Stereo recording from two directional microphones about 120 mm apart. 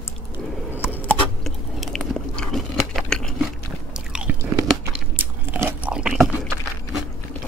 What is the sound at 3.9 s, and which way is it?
Biting, 10° right (ahead or behind).